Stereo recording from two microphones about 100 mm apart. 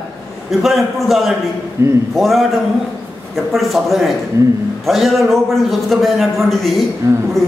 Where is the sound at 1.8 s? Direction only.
25° right (ahead or behind).